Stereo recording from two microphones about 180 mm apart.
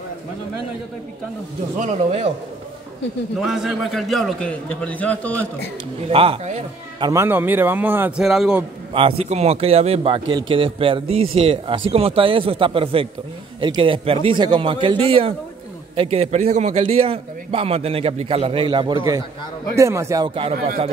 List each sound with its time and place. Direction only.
1.8 s speech: 35° right (ahead or behind)
3.3 s a man's voice: centre (ahead or behind)
6.0 s speech: 30° right (ahead or behind)
7.0 s a man's voice: 15° right (ahead or behind)
8.9 s a man's voice: 30° right (ahead or behind); by 20.2 s 15° right (ahead or behind)
20.2 s a man's voice: 30° right (ahead or behind)